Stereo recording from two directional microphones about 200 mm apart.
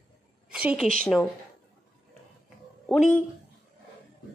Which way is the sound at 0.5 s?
5° right (ahead or behind).